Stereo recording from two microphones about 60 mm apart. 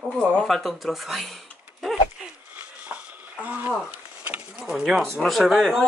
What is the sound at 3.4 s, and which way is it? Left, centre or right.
Speech, right.